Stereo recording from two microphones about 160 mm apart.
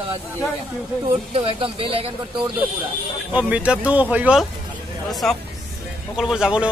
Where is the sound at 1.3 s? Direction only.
35° right (ahead or behind).